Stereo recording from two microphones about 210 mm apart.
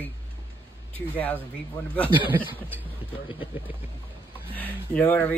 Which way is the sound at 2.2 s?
10° right (ahead or behind).